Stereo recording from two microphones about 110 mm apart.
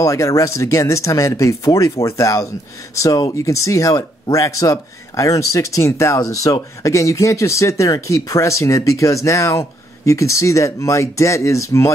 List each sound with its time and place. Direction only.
0.0 s speech: 30° left (ahead or behind)